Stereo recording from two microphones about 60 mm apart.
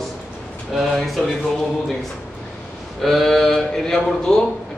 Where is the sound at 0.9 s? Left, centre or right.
Centre.